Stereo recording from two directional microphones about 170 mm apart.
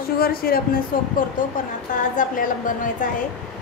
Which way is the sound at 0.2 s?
60° left (ahead or behind).